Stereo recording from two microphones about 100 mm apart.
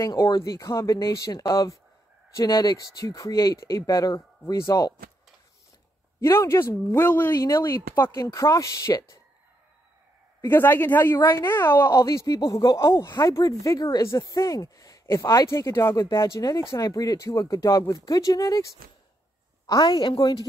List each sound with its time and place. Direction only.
0.0 s speech: 40° left (ahead or behind)
6.2 s a woman's voice: 30° left (ahead or behind)
10.4 s a woman's voice: 20° left (ahead or behind)
11.9 s speech: 35° left (ahead or behind)
16.0 s a woman's voice: 40° left (ahead or behind)